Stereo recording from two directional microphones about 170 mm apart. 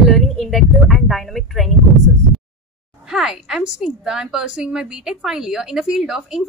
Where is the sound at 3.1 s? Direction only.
5° right (ahead or behind).